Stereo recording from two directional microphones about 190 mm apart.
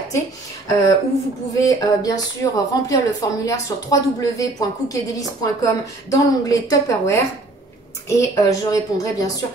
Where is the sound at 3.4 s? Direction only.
15° left (ahead or behind).